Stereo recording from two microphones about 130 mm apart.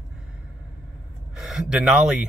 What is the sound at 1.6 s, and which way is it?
Speech, 5° right (ahead or behind).